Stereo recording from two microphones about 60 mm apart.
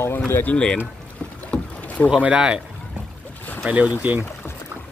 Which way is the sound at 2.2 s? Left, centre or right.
Centre.